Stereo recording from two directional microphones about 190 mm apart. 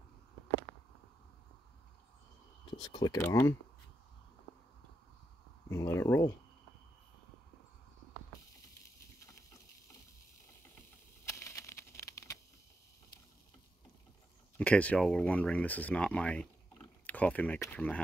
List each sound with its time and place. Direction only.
2.9 s speech: 20° left (ahead or behind)
3.2 s speech: 10° left (ahead or behind)
5.7 s speech: 15° left (ahead or behind)
11.2 s a sound: 15° left (ahead or behind)
14.6 s speech: 5° left (ahead or behind)